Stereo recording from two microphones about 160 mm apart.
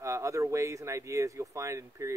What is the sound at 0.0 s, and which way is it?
Speech, 20° right (ahead or behind).